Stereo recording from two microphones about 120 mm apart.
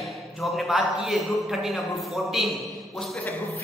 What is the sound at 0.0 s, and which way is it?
A man's voice, centre (ahead or behind).